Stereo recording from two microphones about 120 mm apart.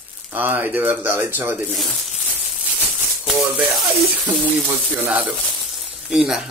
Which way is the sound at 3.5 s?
5° right (ahead or behind).